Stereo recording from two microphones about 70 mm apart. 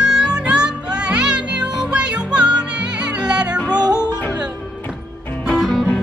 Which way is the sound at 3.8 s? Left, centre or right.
Right.